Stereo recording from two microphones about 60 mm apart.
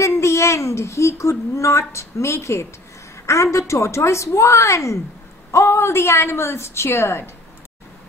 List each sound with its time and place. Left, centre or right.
0.0 s a woman's voice: left